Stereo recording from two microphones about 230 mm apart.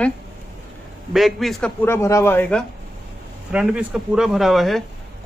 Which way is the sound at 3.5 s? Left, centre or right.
Centre.